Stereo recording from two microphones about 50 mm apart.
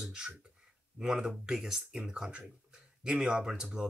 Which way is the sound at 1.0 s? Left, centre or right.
Centre.